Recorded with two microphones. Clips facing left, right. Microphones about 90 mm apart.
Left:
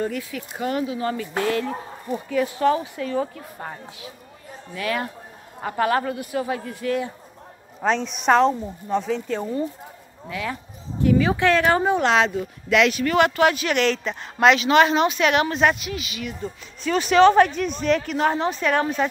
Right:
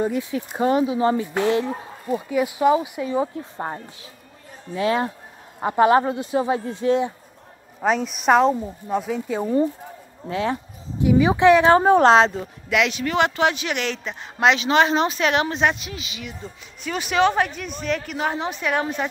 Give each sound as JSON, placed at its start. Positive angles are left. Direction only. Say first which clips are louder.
{"t": 0.0, "sound": "speech", "louder": "right 4 dB", "side_deg": -20}
{"t": 7.8, "sound": "a woman's voice", "louder": "right 1 dB", "side_deg": -5}
{"t": 10.2, "sound": "a woman's voice", "louder": "right 5 dB", "side_deg": -30}
{"t": 11.0, "sound": "speech", "louder": "right 2 dB", "side_deg": -15}
{"t": 11.8, "sound": "a woman's voice", "louder": "right 5 dB", "side_deg": -35}
{"t": 12.6, "sound": "speech", "louder": "left 3 dB", "side_deg": -15}
{"t": 16.8, "sound": "speech", "louder": "left 5 dB", "side_deg": -10}